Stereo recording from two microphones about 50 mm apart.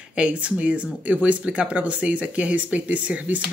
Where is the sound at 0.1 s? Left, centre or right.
Right.